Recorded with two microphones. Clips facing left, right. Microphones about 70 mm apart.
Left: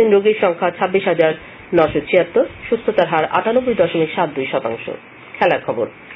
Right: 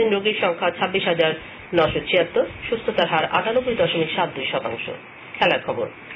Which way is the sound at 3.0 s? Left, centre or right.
Left.